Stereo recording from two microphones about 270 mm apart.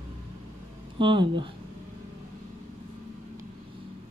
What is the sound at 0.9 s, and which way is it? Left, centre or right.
Speech, centre.